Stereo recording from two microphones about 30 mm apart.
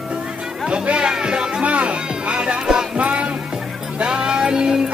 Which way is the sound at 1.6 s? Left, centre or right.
Right.